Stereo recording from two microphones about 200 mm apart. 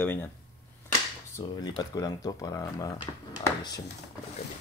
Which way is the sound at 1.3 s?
20° left (ahead or behind).